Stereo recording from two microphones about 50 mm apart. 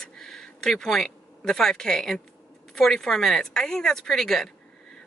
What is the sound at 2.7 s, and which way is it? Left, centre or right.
A woman's voice, centre.